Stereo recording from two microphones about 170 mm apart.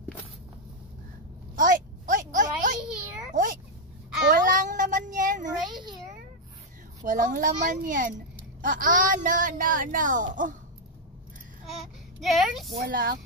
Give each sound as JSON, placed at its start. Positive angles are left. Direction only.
{"t": 1.5, "sound": "a sound", "side_deg": -50}
{"t": 4.3, "sound": "cat", "side_deg": -50}
{"t": 5.7, "sound": "a sound", "side_deg": -25}
{"t": 7.0, "sound": "speech", "side_deg": -50}
{"t": 12.2, "sound": "speech", "side_deg": 0}
{"t": 12.8, "sound": "speech", "side_deg": -60}